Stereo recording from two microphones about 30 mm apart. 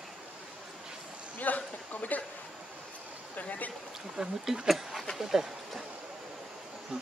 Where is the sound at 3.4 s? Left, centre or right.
Left.